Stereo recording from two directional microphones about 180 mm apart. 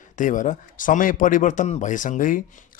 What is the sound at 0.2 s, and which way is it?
A man's voice, 45° left (ahead or behind).